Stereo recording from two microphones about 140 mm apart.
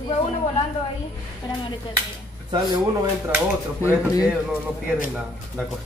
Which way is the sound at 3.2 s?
15° right (ahead or behind).